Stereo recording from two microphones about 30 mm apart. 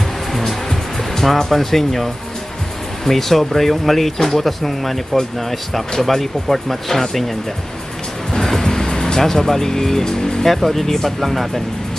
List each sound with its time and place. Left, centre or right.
0.3 s music: centre
1.6 s speech: centre
3.1 s speech: centre
8.3 s music: centre
9.2 s speech: centre
10.5 s speech: centre